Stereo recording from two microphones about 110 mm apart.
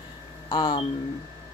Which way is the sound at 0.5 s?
45° left (ahead or behind).